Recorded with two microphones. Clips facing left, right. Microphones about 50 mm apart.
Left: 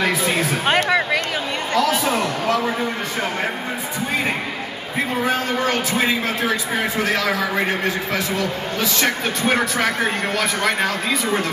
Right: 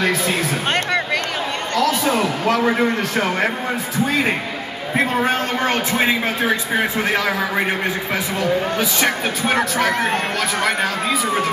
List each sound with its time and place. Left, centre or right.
0.0 s a sound: centre
2.0 s speech: centre
2.4 s speech: right
5.2 s speech: right